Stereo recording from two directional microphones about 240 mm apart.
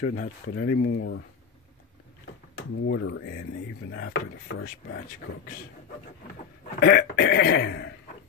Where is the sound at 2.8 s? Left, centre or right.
Left.